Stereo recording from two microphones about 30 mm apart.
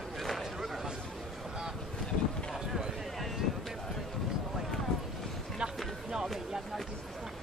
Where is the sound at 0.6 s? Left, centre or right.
Centre.